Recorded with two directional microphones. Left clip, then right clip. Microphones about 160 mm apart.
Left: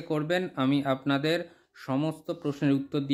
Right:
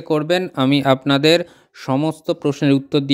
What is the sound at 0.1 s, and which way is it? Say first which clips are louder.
Speech: right 11 dB; 50° right (ahead or behind).